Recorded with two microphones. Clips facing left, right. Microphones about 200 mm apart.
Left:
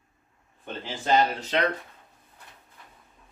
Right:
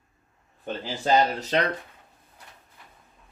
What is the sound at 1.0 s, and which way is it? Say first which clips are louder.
Speech: right 1 dB; 40° right (ahead or behind).